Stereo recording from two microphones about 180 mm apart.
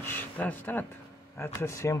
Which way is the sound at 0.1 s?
10° left (ahead or behind).